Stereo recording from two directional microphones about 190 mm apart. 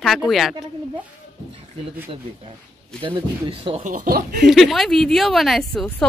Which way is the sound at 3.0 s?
25° right (ahead or behind).